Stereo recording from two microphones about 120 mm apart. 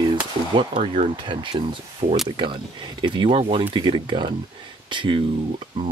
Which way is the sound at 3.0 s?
40° right (ahead or behind).